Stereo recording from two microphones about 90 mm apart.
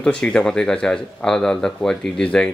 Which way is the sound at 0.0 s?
10° left (ahead or behind).